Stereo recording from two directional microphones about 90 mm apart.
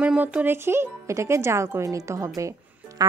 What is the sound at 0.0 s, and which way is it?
Speech, 10° right (ahead or behind).